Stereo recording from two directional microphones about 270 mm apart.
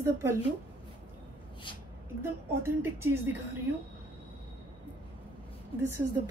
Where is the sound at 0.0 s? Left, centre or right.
Centre.